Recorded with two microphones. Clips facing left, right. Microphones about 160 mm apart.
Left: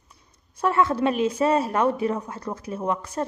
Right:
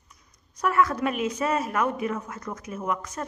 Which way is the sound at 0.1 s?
30° left (ahead or behind).